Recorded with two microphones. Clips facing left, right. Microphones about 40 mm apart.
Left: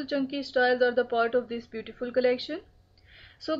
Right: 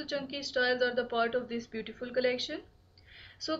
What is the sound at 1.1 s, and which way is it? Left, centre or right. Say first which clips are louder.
Speech: left 5 dB; centre.